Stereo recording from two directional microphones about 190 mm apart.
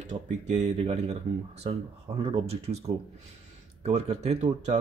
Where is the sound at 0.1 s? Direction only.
35° right (ahead or behind).